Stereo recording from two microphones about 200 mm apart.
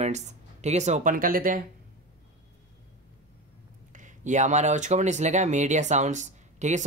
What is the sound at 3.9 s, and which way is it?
Speech, 40° right (ahead or behind).